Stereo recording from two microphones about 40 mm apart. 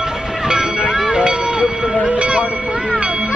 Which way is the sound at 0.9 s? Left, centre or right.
Right.